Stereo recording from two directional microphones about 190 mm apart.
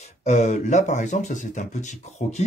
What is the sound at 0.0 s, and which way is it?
Speech, 40° left (ahead or behind).